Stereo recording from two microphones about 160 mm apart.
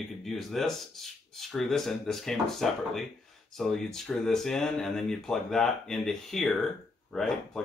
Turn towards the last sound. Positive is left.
turn(degrees=5)  # may be behind; listen again after turning